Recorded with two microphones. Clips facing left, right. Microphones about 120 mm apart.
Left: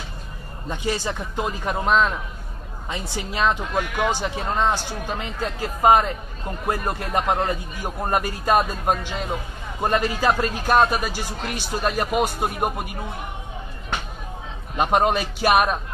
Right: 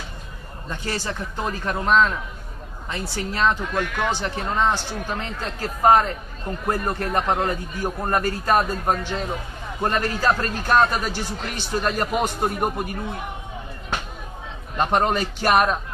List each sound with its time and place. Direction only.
0.7 s speech: 15° left (ahead or behind)
14.8 s speech: 10° left (ahead or behind)